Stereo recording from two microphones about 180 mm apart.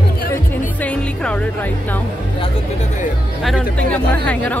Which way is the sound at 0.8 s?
5° left (ahead or behind).